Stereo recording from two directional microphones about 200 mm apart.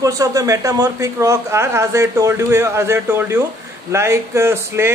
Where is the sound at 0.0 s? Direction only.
15° right (ahead or behind).